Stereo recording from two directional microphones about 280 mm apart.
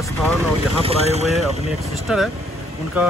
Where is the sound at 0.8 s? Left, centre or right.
Right.